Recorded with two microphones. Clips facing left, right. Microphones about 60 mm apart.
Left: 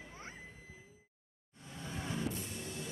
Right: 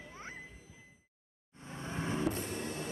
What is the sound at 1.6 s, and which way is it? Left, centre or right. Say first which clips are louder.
Vehicle: right 4 dB; right.